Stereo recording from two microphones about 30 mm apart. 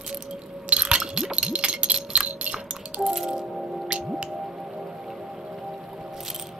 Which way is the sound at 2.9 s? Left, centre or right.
Right.